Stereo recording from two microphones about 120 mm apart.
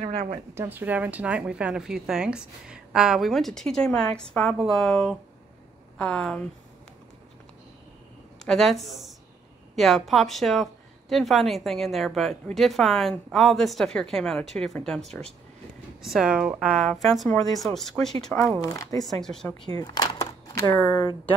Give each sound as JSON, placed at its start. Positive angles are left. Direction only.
{"t": 0.0, "sound": "speech", "side_deg": -60}
{"t": 0.6, "sound": "speech", "side_deg": -15}
{"t": 8.5, "sound": "speech", "side_deg": 0}
{"t": 18.7, "sound": "speech", "side_deg": 30}
{"t": 19.0, "sound": "speech", "side_deg": 5}
{"t": 19.8, "sound": "a sound", "side_deg": 35}
{"t": 20.7, "sound": "speech", "side_deg": 15}